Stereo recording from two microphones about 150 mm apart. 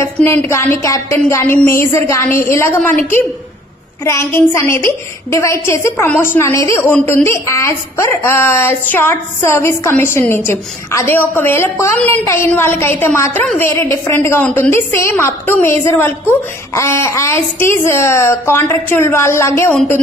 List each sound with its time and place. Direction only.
0.0 s a woman's voice: 15° left (ahead or behind)
19.7 s speech: 5° left (ahead or behind)